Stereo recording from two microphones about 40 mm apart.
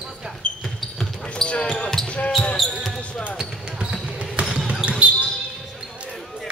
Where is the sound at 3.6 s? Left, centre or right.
Right.